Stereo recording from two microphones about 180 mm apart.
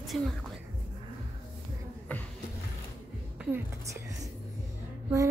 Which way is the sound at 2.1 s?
10° left (ahead or behind).